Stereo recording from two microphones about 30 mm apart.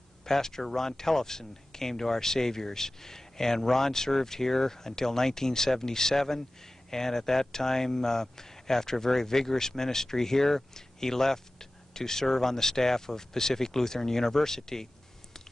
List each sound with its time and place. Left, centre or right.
0.2 s speech: centre